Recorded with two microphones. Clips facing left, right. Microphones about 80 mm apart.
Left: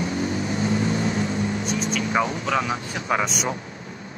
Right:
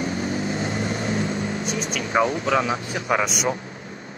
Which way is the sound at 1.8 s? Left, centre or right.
Left.